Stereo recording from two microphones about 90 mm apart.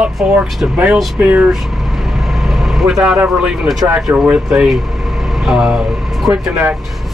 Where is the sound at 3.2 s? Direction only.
10° right (ahead or behind).